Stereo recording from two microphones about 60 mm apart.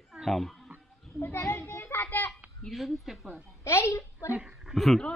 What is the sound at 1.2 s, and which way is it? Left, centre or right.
Children playing, left.